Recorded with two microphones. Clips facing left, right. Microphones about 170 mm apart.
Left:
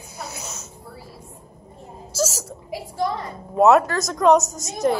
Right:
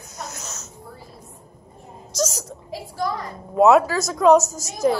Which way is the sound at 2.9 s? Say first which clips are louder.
Left 1 dB; 25° left (ahead or behind).